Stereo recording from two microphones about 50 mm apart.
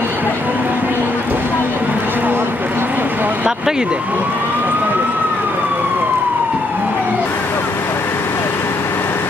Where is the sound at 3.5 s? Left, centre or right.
Centre.